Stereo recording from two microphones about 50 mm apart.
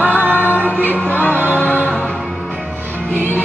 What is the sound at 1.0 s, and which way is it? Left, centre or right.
Music, left.